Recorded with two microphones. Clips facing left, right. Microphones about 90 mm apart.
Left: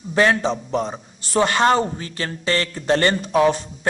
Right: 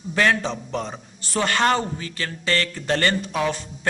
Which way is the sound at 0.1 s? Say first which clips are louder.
Left 3 dB; 20° left (ahead or behind).